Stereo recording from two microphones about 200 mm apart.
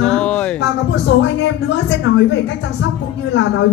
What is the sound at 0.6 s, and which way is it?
A woman's voice, 60° left (ahead or behind).